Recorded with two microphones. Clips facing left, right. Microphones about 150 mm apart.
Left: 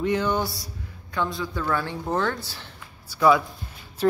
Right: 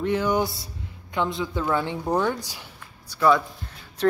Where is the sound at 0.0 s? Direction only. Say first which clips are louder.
Right 1 dB; 5° right (ahead or behind).